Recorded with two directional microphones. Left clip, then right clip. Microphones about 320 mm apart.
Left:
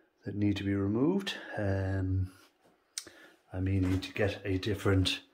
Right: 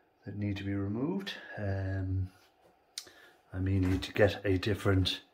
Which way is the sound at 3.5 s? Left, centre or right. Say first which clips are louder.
Left 1 dB; centre.